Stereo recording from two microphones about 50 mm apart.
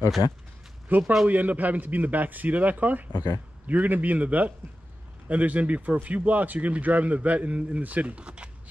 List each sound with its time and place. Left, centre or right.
0.8 s a man's voice: right